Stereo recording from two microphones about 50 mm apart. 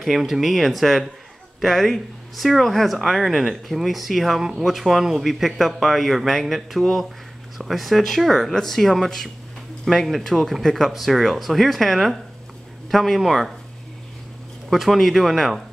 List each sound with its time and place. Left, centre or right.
0.1 s speech: centre
14.7 s speech: centre